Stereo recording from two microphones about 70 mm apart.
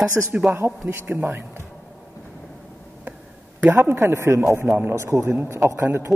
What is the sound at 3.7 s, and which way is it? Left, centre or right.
A man's voice, right.